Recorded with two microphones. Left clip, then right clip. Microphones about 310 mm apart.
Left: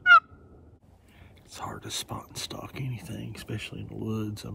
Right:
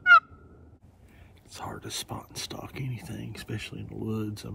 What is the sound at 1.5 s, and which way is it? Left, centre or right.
Speech, centre.